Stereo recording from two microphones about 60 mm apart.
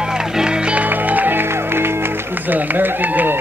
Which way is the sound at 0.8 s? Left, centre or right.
Right.